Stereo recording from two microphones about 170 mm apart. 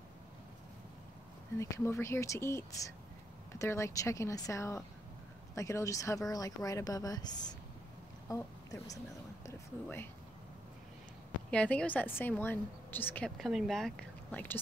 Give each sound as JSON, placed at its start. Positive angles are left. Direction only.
{"t": 1.6, "sound": "a woman's voice", "side_deg": 15}
{"t": 11.5, "sound": "a woman's voice", "side_deg": 10}